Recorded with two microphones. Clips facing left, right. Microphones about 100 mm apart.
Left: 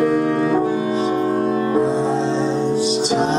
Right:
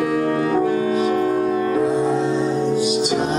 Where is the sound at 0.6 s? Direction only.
20° left (ahead or behind).